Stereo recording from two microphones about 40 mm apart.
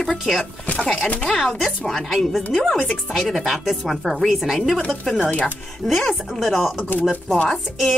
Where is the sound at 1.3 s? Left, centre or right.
Centre.